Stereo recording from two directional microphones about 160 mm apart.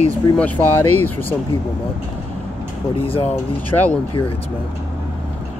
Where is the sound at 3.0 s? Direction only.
35° left (ahead or behind).